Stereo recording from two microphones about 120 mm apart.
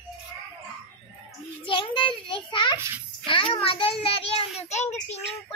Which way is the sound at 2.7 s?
20° right (ahead or behind).